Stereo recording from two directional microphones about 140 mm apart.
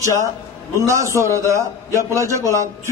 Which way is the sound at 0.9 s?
20° right (ahead or behind).